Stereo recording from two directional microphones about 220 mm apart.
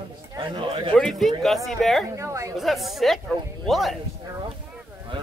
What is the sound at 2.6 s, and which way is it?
Speech, centre (ahead or behind).